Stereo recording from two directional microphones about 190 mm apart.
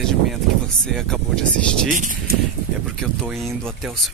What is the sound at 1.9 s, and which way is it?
Speech, 45° right (ahead or behind).